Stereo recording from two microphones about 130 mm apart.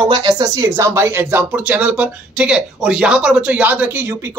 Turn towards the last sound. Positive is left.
turn(degrees=-15)  # may be behind; listen again after turning